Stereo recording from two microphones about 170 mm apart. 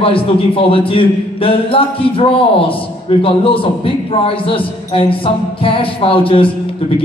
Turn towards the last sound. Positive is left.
turn(degrees=30)  # may be behind; listen again after turning